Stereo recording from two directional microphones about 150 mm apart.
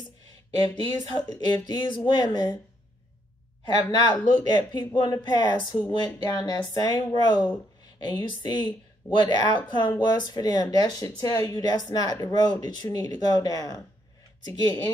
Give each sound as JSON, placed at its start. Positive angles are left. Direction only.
{"t": 0.6, "sound": "speech", "side_deg": 30}
{"t": 3.6, "sound": "speech", "side_deg": 30}